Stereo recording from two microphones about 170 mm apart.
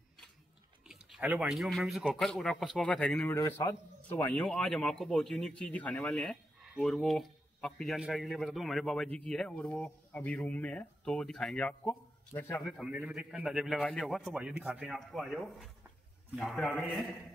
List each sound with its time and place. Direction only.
0.8 s a man's voice: 5° right (ahead or behind); by 4.3 s 15° left (ahead or behind)
4.3 s speech: 5° left (ahead or behind)
12.8 s speech: 5° right (ahead or behind)